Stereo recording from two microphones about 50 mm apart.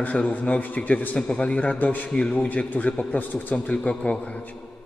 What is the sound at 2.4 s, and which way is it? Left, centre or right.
A man's voice, left.